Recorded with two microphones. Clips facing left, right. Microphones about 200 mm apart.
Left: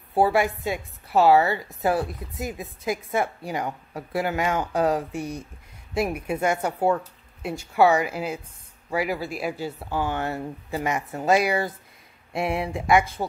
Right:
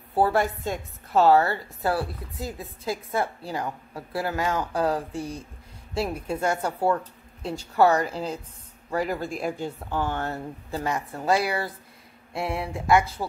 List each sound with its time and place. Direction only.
0.1 s a woman's voice: 10° left (ahead or behind)
12.3 s mantra: 20° left (ahead or behind)